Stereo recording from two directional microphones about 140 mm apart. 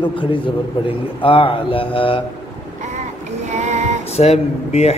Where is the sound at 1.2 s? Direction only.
40° left (ahead or behind).